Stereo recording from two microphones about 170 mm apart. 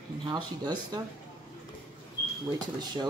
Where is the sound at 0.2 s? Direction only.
25° right (ahead or behind).